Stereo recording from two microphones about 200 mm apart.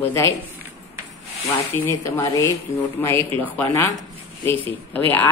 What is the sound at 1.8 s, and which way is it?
Mantra, 15° left (ahead or behind).